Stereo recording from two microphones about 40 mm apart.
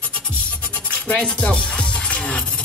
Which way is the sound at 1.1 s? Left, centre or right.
Left.